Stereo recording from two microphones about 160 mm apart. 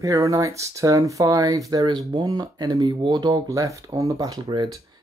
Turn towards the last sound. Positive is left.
turn(degrees=-25)  # may be behind; listen again after turning